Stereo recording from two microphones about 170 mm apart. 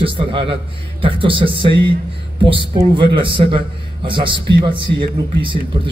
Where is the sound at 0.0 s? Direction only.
30° right (ahead or behind).